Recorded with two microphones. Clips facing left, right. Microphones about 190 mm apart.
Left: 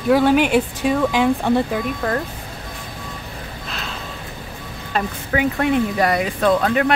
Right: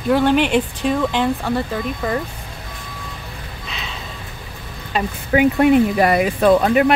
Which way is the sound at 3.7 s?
Centre (ahead or behind).